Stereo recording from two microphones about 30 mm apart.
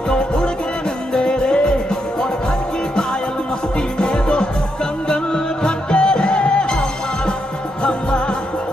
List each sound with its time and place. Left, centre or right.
0.1 s music: left
4.0 s music: left